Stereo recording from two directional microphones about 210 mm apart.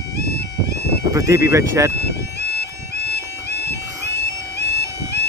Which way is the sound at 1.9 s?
50° left (ahead or behind).